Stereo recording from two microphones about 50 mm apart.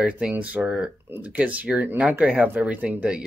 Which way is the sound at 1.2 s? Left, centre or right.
Right.